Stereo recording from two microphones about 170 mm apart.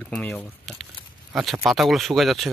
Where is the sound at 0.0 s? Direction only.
5° left (ahead or behind).